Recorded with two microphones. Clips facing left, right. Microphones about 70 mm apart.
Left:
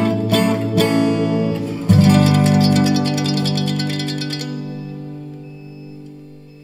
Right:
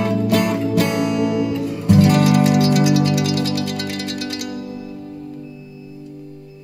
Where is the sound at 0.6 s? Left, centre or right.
Left.